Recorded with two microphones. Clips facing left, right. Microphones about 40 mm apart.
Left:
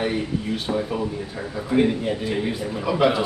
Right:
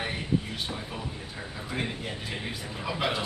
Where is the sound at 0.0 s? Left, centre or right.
Centre.